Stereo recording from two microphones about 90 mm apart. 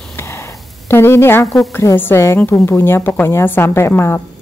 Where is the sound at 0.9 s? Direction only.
25° left (ahead or behind).